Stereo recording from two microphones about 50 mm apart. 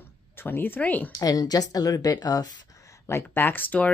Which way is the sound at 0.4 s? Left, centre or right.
Left.